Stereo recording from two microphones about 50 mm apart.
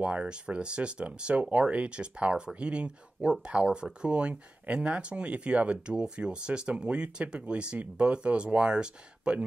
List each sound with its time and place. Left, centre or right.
0.0 s speech: right